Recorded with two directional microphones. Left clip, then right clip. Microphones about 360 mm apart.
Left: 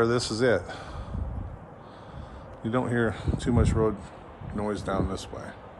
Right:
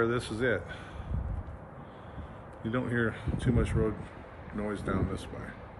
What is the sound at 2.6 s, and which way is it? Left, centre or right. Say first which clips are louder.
A man's voice: left 5 dB; centre.